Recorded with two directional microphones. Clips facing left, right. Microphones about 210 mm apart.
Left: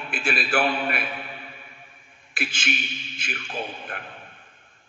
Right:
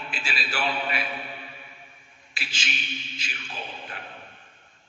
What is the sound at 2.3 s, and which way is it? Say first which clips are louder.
A man's voice: left 8 dB; 55° left (ahead or behind).